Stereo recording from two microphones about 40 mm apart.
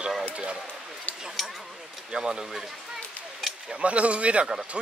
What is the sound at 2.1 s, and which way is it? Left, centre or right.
Speech, right.